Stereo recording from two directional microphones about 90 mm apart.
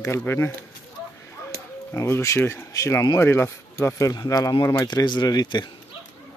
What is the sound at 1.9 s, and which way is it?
Speech, 35° left (ahead or behind).